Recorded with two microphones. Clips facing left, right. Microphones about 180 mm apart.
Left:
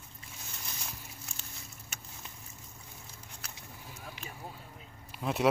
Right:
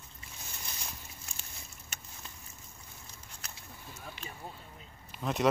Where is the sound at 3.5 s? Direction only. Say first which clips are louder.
Right 1 dB; 10° left (ahead or behind).